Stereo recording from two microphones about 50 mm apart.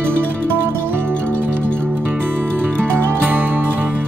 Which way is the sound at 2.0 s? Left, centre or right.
Right.